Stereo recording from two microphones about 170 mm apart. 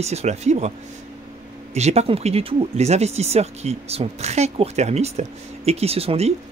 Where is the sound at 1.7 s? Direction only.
40° right (ahead or behind).